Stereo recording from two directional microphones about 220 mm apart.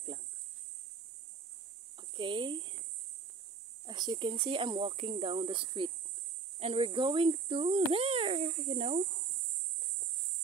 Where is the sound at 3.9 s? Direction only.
20° right (ahead or behind).